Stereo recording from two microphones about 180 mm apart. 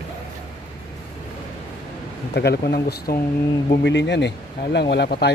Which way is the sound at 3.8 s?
75° left (ahead or behind).